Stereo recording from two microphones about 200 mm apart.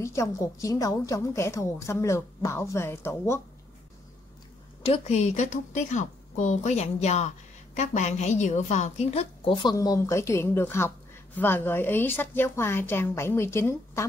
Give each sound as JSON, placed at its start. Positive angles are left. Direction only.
{"t": 0.0, "sound": "a woman's voice", "side_deg": 15}
{"t": 4.8, "sound": "a woman's voice", "side_deg": 30}